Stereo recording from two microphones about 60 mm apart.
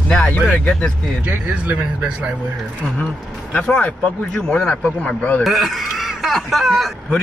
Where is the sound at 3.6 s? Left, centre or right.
Left.